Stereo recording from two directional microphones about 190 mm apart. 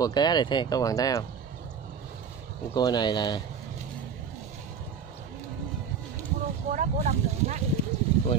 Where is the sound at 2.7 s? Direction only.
20° left (ahead or behind).